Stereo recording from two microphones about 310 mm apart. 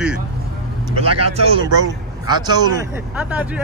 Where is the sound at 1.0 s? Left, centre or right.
Right.